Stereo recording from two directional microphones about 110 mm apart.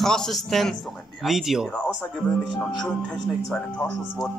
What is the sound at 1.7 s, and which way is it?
Speech, 10° left (ahead or behind).